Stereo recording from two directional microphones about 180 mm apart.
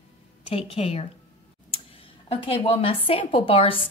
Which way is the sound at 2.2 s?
30° left (ahead or behind).